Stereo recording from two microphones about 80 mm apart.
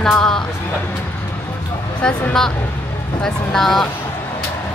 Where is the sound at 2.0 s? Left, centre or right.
Centre.